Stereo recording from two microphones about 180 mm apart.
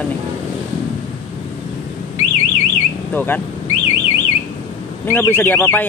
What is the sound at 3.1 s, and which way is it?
Speech, 10° left (ahead or behind).